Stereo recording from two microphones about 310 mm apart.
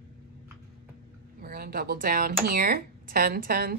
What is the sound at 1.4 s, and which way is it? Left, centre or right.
Speech, right.